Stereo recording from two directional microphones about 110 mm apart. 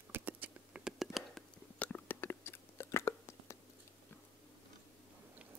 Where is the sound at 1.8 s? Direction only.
15° left (ahead or behind).